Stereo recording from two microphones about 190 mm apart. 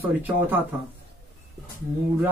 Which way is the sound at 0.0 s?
10° right (ahead or behind).